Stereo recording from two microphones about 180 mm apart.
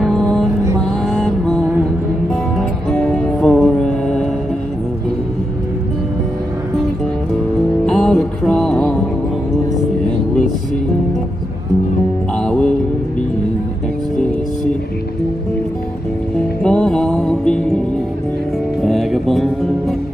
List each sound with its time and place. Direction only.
0.0 s music: 5° left (ahead or behind)
1.0 s mantra: 5° left (ahead or behind)
2.9 s music: 5° left (ahead or behind)
7.8 s music: 5° left (ahead or behind)
12.4 s mantra: 5° left (ahead or behind)
16.6 s music: 5° left (ahead or behind)
18.8 s music: centre (ahead or behind)